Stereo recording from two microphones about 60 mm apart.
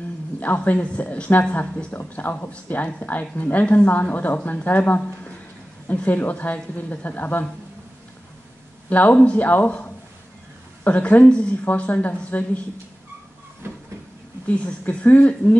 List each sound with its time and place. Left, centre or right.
0.4 s a woman's voice: left
8.8 s a woman's voice: left
13.6 s train: right
14.5 s a woman's voice: left